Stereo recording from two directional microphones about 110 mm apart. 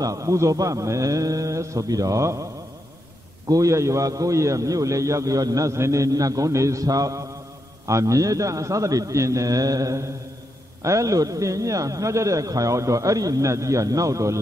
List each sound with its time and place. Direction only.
0.0 s a man's voice: 30° right (ahead or behind)
3.4 s a man's voice: 30° right (ahead or behind)